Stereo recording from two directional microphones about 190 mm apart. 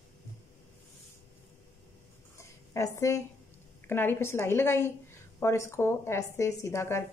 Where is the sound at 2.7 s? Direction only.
15° left (ahead or behind).